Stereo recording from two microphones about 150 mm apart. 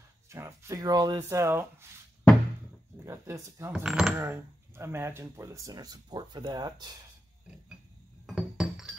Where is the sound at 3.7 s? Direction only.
5° right (ahead or behind).